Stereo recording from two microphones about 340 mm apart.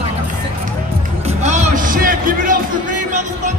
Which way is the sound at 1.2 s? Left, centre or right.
Right.